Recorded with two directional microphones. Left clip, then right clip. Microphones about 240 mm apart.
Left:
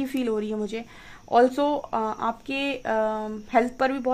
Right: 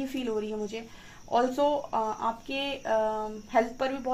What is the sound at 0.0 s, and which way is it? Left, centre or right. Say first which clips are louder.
Speech: left 5 dB; left.